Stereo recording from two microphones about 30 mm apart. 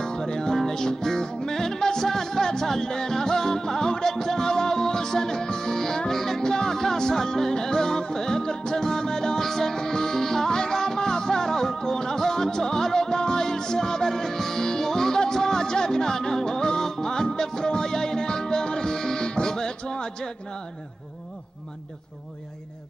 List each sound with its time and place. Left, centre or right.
0.0 s music: left
9.4 s music: centre